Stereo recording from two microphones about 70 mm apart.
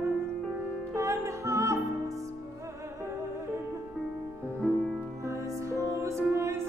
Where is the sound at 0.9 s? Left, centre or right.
Right.